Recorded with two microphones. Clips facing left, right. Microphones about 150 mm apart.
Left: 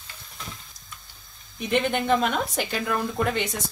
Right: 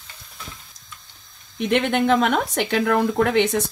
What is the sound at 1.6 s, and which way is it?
Speech, 70° right (ahead or behind).